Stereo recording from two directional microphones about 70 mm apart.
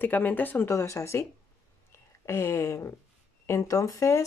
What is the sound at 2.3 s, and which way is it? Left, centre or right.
Speech, left.